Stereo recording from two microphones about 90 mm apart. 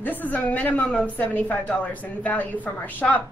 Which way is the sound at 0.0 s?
20° left (ahead or behind).